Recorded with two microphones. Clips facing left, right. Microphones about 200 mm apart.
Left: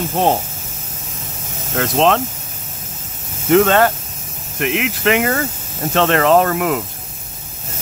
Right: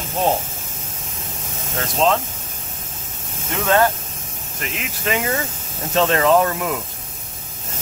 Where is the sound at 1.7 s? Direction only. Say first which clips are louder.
Left 4 dB; 70° left (ahead or behind).